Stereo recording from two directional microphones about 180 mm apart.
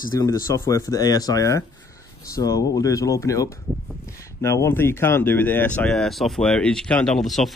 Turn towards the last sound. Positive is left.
turn(degrees=0)  # may be behind; listen again after turning